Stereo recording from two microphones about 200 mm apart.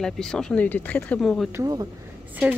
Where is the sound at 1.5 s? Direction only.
20° right (ahead or behind).